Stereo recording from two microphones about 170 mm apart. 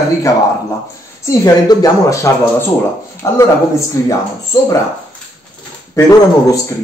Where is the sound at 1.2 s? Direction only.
20° left (ahead or behind).